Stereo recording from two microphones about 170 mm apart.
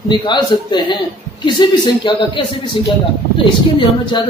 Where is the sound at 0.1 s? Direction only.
25° left (ahead or behind).